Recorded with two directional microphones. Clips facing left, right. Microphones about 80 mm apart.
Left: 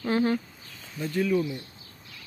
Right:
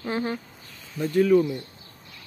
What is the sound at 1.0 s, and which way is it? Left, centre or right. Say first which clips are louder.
Speech: right 6 dB; right.